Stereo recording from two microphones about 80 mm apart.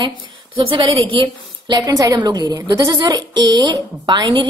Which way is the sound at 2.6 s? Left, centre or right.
Right.